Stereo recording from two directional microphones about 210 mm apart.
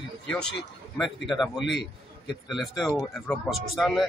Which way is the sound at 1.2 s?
Centre (ahead or behind).